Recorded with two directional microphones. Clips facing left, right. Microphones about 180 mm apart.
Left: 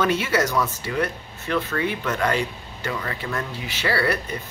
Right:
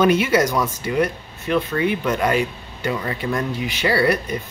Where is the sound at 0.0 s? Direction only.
15° right (ahead or behind).